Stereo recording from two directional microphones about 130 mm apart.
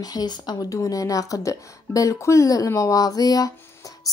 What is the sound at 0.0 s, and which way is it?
Speech, 30° left (ahead or behind).